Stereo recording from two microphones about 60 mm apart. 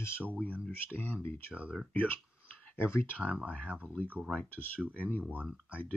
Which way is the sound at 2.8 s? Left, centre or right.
Left.